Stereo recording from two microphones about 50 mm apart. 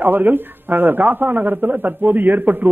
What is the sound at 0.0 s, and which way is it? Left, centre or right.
A man's voice, right.